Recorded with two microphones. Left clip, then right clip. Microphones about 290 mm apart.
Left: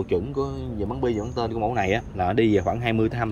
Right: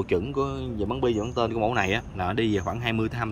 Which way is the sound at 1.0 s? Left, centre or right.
Right.